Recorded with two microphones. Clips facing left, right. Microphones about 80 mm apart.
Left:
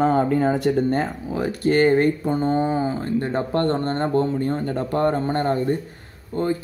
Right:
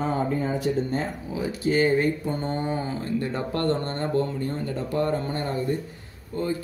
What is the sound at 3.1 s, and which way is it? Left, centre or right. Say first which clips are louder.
Speech: left 5 dB; left.